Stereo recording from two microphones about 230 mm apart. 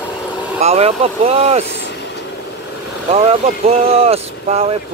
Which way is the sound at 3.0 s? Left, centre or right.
Right.